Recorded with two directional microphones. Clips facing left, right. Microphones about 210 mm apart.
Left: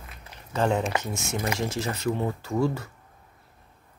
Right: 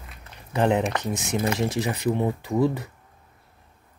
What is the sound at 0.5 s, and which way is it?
Speech, 20° right (ahead or behind).